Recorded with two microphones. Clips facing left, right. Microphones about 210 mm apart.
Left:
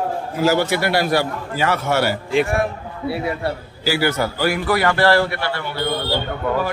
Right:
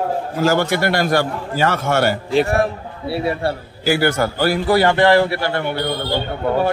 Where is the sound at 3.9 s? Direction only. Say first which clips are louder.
Right 3 dB; 50° right (ahead or behind).